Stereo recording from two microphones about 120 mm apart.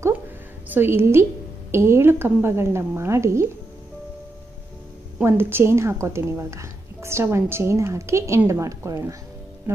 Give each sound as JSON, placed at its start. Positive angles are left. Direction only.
{"t": 0.7, "sound": "a woman's voice", "side_deg": -20}
{"t": 5.2, "sound": "a woman's voice", "side_deg": -20}